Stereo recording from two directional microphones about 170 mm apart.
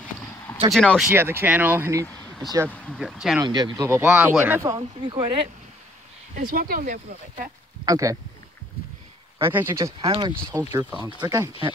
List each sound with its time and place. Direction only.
0.7 s speech: centre (ahead or behind)
1.1 s speech: 15° right (ahead or behind)
2.0 s a sound: 10° left (ahead or behind)
2.7 s speech: 10° left (ahead or behind)
3.4 s speech: 25° right (ahead or behind)
6.3 s speech: 55° right (ahead or behind)
7.8 s speech: 20° right (ahead or behind)
9.4 s speech: 10° right (ahead or behind)